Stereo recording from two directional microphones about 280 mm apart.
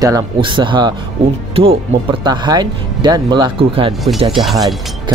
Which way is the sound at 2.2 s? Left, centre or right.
Centre.